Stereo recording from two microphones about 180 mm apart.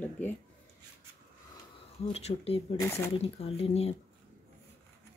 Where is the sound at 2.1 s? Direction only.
35° left (ahead or behind).